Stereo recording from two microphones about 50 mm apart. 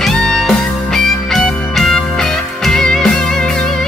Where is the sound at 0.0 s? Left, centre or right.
Centre.